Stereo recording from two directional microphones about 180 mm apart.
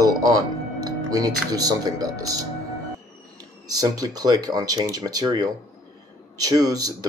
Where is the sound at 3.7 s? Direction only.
20° right (ahead or behind).